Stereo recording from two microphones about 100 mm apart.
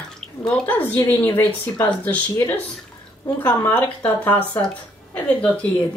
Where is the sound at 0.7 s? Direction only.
20° left (ahead or behind).